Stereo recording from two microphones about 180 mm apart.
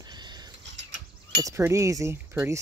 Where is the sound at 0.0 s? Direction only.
25° right (ahead or behind).